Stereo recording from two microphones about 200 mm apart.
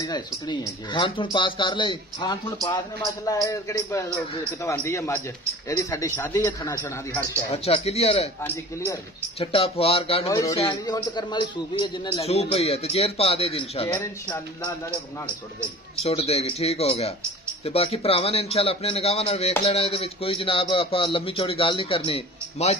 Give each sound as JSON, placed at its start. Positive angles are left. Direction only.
{"t": 0.0, "sound": "a man's voice", "side_deg": 20}
{"t": 7.5, "sound": "speech", "side_deg": 30}
{"t": 8.4, "sound": "a man's voice", "side_deg": 10}
{"t": 9.4, "sound": "speech", "side_deg": 30}
{"t": 10.2, "sound": "a man's voice", "side_deg": 15}
{"t": 13.8, "sound": "a man's voice", "side_deg": 10}
{"t": 16.0, "sound": "speech", "side_deg": 30}